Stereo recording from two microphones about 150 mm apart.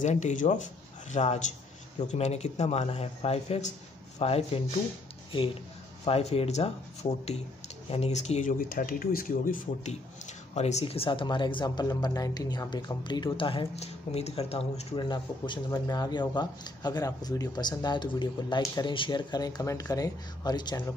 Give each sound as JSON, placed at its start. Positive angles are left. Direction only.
{"t": 0.0, "sound": "speech", "side_deg": 50}
{"t": 10.5, "sound": "speech", "side_deg": 45}
{"t": 15.0, "sound": "speech", "side_deg": 30}